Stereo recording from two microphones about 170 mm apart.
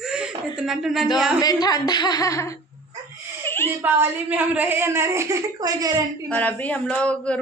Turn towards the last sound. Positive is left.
turn(degrees=5)  # may be behind; listen again after turning